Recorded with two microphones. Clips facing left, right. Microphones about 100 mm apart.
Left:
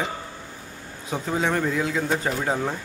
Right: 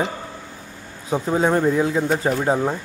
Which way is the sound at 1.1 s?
30° right (ahead or behind).